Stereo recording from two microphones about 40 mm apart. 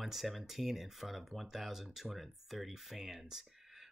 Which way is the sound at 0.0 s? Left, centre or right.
Centre.